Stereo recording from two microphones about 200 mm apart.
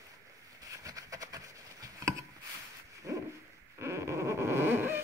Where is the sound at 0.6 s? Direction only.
15° right (ahead or behind).